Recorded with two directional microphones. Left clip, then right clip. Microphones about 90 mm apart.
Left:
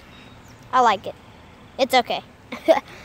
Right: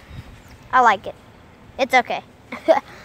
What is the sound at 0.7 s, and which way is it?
Speech, 15° left (ahead or behind).